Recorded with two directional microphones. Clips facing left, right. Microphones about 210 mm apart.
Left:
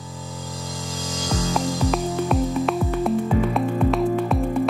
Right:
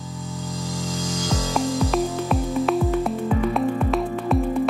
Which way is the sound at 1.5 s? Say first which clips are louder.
Right 2 dB; centre (ahead or behind).